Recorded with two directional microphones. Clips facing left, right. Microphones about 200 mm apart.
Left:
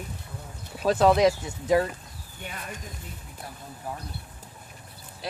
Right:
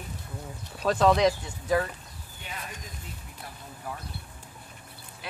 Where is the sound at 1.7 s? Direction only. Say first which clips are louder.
Left 4 dB; 20° left (ahead or behind).